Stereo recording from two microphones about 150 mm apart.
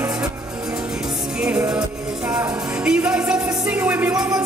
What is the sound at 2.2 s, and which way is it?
Music, 20° right (ahead or behind).